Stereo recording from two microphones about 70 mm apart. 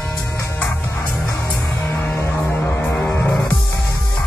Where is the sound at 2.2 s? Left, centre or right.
Left.